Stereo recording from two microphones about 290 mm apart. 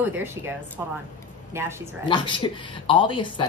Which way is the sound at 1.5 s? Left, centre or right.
Centre.